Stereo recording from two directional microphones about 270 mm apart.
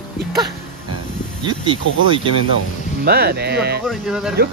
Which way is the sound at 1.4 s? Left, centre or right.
Centre.